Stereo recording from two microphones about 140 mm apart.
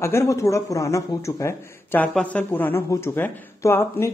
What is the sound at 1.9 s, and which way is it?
Speech, 10° left (ahead or behind).